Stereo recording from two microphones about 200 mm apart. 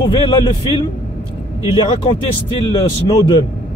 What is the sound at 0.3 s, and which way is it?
Speech, 25° left (ahead or behind).